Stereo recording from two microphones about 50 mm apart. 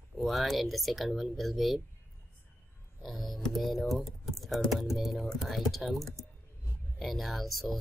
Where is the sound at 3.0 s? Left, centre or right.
Centre.